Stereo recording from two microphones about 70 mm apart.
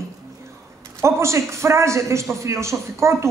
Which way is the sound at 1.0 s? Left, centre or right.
Right.